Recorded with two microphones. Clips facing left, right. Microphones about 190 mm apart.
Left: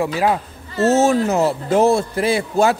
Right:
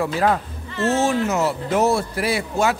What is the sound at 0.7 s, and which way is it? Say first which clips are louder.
Speech: left 5 dB; 40° left (ahead or behind).